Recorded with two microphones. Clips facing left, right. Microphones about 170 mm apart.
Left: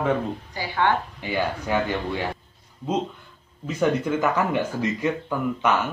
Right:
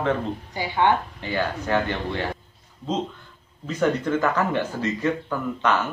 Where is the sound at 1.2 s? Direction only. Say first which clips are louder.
Left 2 dB; 10° left (ahead or behind).